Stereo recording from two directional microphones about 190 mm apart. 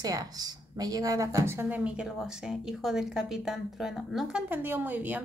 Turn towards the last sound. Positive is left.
turn(degrees=-10)  # may be behind; listen again after turning